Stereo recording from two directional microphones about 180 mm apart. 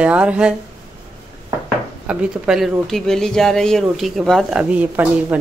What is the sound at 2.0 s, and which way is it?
A woman's voice, 5° right (ahead or behind).